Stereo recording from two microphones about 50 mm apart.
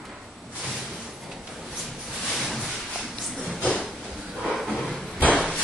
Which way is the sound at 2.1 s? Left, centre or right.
Centre.